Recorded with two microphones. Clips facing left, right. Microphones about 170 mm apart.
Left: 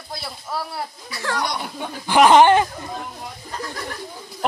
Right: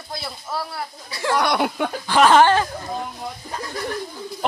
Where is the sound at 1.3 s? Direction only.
75° right (ahead or behind).